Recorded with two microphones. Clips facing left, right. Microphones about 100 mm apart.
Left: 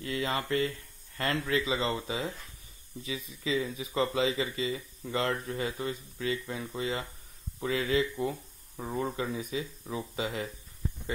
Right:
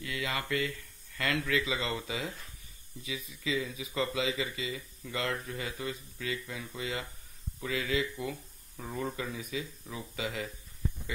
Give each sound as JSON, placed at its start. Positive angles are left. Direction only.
{"t": 0.0, "sound": "speech", "side_deg": 35}